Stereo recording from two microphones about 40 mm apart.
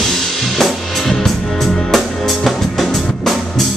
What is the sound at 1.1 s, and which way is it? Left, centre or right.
Music, centre.